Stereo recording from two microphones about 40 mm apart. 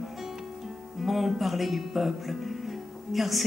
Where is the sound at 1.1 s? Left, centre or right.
Centre.